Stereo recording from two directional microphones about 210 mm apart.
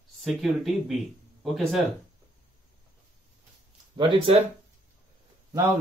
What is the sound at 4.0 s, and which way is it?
Speech, 25° right (ahead or behind).